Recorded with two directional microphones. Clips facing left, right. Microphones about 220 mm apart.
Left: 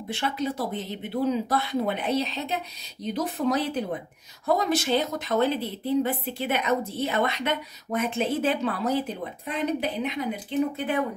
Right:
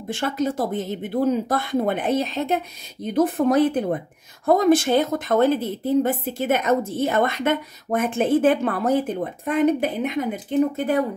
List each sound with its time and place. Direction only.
0.1 s a woman's voice: 45° right (ahead or behind)